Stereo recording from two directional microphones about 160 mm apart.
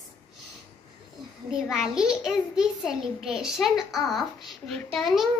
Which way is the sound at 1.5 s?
5° right (ahead or behind).